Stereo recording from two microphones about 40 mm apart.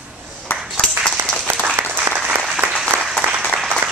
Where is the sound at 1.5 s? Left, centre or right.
Right.